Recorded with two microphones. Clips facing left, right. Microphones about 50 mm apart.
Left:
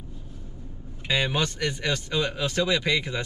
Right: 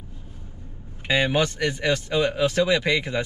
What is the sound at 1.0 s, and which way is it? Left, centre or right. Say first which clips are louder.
Speech: right 4 dB; centre.